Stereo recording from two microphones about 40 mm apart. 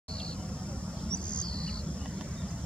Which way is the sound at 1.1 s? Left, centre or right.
Left.